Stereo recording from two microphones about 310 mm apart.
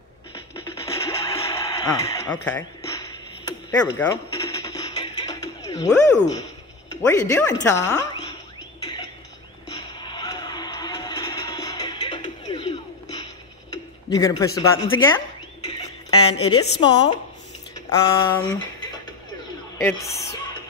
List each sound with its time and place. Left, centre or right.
0.8 s a sound: centre
7.0 s speech: centre
9.7 s music: centre
13.7 s a man's voice: centre
15.1 s bird: centre
16.1 s a woman's voice: left
17.7 s a sound: centre
19.8 s speech: centre